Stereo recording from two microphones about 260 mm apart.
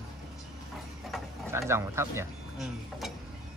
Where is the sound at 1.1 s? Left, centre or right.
Centre.